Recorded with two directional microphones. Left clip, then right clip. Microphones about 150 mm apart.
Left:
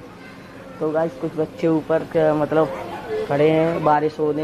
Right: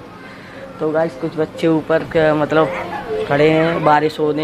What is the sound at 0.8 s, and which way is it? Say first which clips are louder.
Speech: right 4 dB; 20° right (ahead or behind).